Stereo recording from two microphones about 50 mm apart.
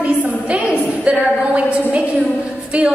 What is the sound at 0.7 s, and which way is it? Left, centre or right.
A woman's voice, right.